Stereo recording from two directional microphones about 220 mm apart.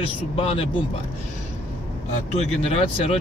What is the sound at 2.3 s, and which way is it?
Speech, 30° left (ahead or behind).